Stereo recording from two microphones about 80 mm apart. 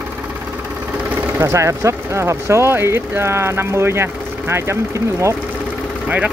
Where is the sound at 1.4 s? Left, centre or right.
Right.